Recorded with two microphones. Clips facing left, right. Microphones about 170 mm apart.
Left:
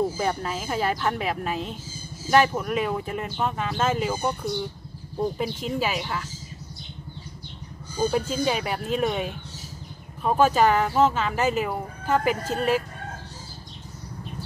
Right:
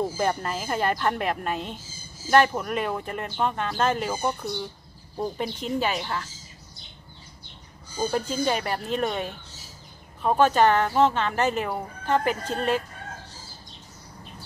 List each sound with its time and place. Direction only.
0.2 s speech: centre (ahead or behind)
5.4 s speech: 5° left (ahead or behind)
8.0 s speech: 5° left (ahead or behind)